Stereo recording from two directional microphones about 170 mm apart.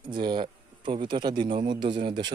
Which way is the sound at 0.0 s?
25° right (ahead or behind).